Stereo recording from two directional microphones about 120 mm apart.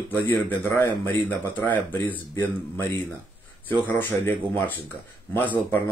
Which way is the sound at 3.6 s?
15° left (ahead or behind).